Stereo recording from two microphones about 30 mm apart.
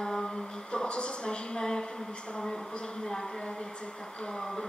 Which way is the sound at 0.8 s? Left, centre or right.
Left.